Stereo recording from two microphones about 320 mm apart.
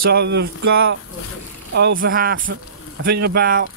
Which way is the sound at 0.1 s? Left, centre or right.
Right.